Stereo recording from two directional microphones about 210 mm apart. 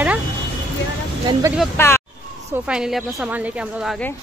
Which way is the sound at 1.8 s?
10° left (ahead or behind).